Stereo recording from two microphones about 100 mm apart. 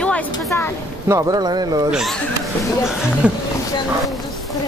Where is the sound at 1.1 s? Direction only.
35° right (ahead or behind).